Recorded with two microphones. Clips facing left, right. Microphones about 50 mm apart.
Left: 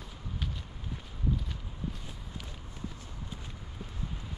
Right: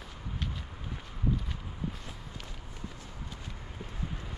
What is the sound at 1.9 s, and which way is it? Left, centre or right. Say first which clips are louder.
Walk: even; centre.